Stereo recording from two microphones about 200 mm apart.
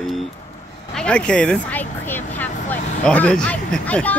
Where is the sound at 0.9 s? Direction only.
5° left (ahead or behind).